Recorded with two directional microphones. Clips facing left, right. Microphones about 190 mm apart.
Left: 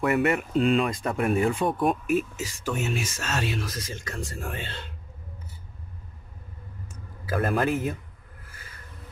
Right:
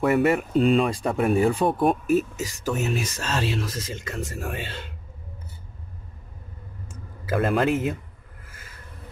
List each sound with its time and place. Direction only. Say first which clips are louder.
0.0 s speech: right 3 dB; 35° right (ahead or behind)
4.1 s speech: right 3 dB; 15° right (ahead or behind)
6.9 s speech: right 3 dB; 20° right (ahead or behind)